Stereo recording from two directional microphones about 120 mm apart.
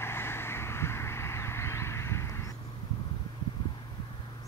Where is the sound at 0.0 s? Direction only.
20° left (ahead or behind).